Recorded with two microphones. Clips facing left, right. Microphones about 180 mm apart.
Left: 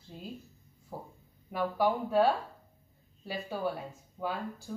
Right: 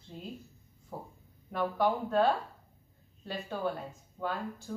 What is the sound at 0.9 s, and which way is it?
A woman's voice, 10° left (ahead or behind).